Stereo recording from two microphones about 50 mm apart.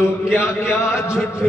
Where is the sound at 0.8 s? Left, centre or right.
Left.